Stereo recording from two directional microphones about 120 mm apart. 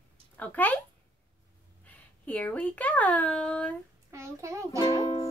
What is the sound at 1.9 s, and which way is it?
Speech, 15° left (ahead or behind).